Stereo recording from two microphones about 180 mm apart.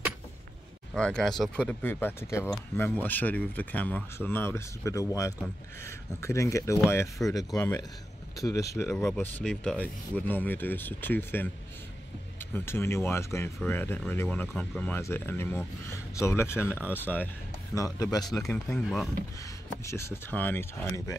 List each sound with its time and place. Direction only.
0.9 s speech: 5° left (ahead or behind)
9.0 s speech: 5° left (ahead or behind)
12.5 s speech: 15° left (ahead or behind)
18.3 s speech: 5° left (ahead or behind)
19.8 s speech: 15° left (ahead or behind)